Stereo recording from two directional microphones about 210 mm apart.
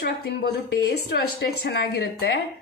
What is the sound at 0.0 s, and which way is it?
A woman's voice, 50° left (ahead or behind).